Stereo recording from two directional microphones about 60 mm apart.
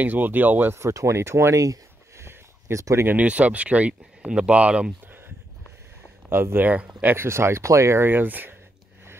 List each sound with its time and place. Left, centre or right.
0.0 s speech: right
0.7 s speech: right
2.2 s a sound: right
3.1 s speech: right
5.0 s a sound: right
6.2 s speech: right
7.2 s speech: right